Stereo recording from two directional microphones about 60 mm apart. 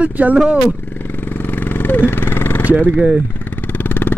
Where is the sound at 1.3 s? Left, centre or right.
Left.